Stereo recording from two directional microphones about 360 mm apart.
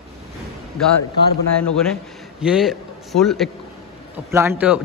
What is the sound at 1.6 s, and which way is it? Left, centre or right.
A man's voice, centre.